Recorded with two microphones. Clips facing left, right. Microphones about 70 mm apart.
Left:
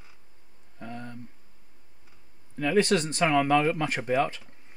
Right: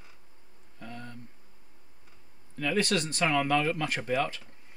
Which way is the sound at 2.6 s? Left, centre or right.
Left.